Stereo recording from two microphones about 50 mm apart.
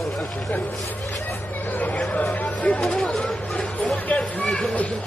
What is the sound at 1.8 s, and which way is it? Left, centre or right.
Chatter, left.